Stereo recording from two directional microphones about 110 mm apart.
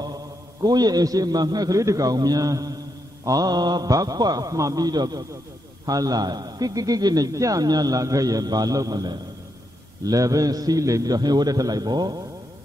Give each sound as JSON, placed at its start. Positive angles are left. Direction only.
{"t": 0.0, "sound": "a man's voice", "side_deg": -35}